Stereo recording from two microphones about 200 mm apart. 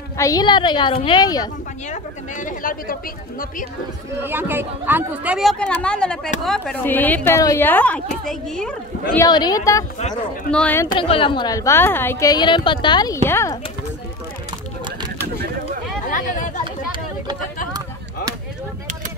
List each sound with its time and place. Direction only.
0.2 s a woman's voice: 20° left (ahead or behind)
1.9 s a sound: 40° left (ahead or behind)
4.2 s a woman's voice: 10° right (ahead or behind)
9.1 s a woman's voice: 20° left (ahead or behind)
9.9 s speech: 35° left (ahead or behind)
10.5 s a woman's voice: 10° left (ahead or behind)
11.0 s a woman's voice: 25° left (ahead or behind)
16.1 s chatter: 40° left (ahead or behind)